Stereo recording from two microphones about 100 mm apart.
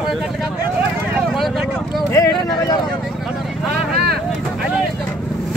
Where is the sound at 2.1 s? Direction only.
35° left (ahead or behind).